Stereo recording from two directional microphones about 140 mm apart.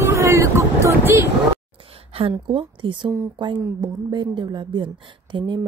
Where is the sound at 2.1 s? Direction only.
40° right (ahead or behind).